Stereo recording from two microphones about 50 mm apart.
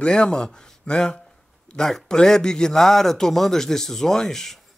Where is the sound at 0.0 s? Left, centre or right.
Centre.